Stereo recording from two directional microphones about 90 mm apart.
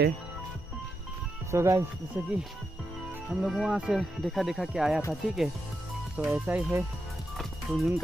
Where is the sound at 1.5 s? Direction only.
30° right (ahead or behind).